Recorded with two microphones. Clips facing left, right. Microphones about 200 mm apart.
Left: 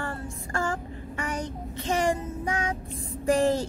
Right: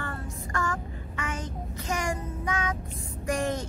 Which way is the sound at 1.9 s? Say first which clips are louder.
Left 6 dB; 30° left (ahead or behind).